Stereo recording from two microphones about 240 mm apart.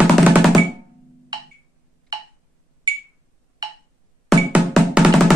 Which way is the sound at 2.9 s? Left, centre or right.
Centre.